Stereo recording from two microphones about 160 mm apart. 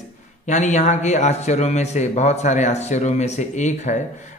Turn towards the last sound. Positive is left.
turn(degrees=50)  # may be behind; listen again after turning